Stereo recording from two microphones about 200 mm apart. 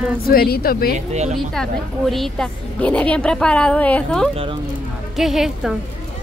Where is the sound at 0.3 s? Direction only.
50° left (ahead or behind).